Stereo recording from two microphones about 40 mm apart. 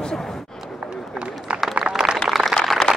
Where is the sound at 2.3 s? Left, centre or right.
Centre.